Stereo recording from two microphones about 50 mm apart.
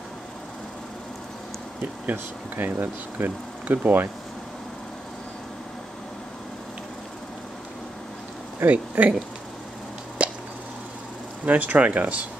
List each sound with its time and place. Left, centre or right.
2.0 s speech: right
8.6 s speech: right
10.2 s hiccup: right
11.4 s speech: right